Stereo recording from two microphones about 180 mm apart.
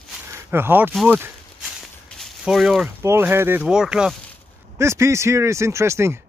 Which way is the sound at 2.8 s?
15° right (ahead or behind).